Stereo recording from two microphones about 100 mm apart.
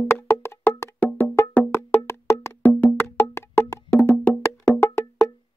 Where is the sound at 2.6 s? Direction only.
10° left (ahead or behind).